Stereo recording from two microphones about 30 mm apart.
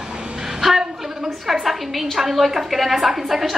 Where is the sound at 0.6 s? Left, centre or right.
Centre.